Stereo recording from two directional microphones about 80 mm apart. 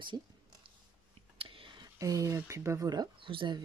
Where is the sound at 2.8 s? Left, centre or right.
Right.